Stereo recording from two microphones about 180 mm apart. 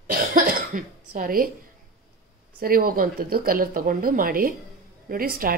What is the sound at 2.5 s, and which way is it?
Speech, 55° right (ahead or behind).